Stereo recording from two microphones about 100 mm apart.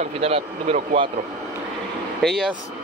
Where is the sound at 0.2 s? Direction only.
90° right.